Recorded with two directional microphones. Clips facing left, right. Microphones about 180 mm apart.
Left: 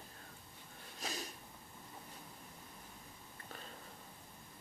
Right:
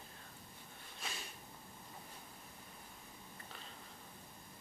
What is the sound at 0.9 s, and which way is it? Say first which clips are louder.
Sniff: left 5 dB; 40° left (ahead or behind).